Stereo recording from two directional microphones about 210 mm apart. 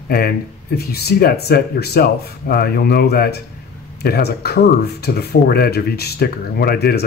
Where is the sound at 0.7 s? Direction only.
50° left (ahead or behind).